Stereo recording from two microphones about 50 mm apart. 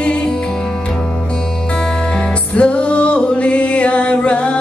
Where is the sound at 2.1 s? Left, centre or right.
Left.